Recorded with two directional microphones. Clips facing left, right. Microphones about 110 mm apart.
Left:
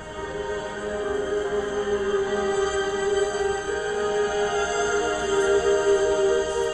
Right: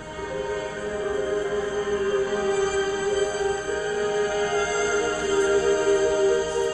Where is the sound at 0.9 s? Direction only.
20° left (ahead or behind).